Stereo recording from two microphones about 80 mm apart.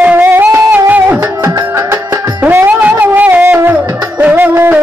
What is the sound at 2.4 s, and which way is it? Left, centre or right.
Music, right.